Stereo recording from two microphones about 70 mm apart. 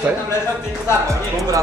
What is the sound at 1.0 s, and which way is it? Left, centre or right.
Speech, right.